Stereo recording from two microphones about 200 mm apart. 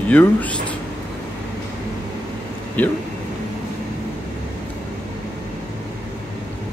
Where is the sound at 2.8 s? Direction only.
10° left (ahead or behind).